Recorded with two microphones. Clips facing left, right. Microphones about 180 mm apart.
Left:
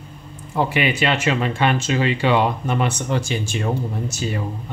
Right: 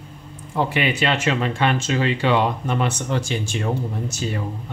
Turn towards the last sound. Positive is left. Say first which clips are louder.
# left 1 dB
turn(degrees=10)  # may be behind; listen again after turning